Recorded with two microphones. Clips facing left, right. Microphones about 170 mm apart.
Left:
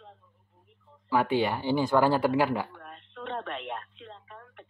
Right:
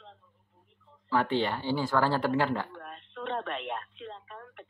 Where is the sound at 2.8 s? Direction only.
70° right (ahead or behind).